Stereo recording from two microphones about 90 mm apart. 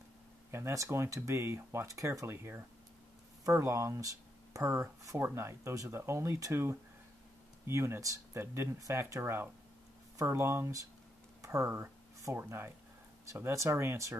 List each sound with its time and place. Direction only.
0.5 s speech: 30° right (ahead or behind)